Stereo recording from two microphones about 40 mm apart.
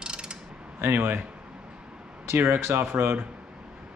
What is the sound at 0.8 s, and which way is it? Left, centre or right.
Speech, right.